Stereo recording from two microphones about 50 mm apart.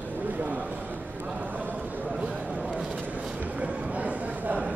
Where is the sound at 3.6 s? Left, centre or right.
Right.